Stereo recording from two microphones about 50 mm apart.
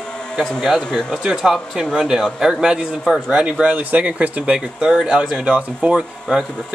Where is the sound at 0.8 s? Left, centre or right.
Centre.